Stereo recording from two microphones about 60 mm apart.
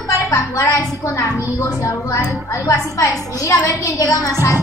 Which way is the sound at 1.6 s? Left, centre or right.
Left.